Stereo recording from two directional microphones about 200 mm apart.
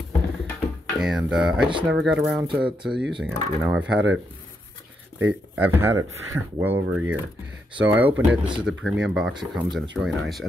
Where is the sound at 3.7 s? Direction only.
5° right (ahead or behind).